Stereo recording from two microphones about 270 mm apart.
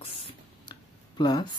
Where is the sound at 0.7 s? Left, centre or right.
Centre.